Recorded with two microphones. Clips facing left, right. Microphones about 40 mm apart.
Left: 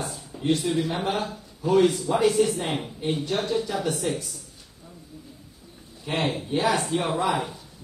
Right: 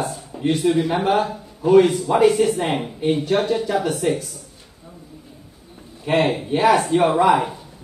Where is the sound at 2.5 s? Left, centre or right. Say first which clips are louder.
Right 6 dB; centre.